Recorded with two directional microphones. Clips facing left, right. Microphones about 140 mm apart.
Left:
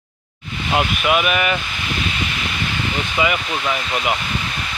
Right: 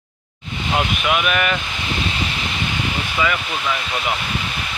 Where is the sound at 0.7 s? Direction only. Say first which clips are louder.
Left 2 dB; 5° left (ahead or behind).